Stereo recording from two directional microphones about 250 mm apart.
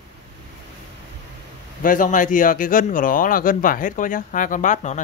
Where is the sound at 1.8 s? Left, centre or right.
Left.